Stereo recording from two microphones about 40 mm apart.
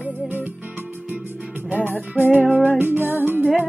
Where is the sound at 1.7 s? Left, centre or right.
Right.